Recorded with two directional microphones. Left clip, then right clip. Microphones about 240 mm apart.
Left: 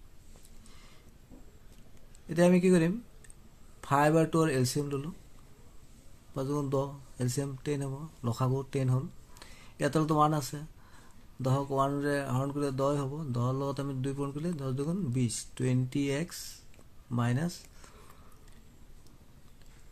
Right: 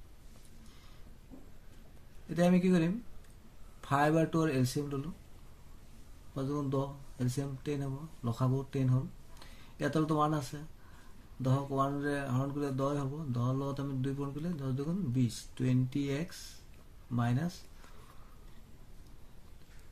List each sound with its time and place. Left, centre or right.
2.2 s a man's voice: left
6.3 s a man's voice: left